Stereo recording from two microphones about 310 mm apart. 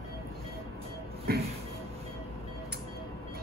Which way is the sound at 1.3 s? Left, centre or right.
Right.